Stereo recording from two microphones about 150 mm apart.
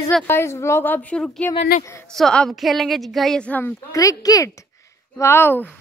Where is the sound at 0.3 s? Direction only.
15° left (ahead or behind).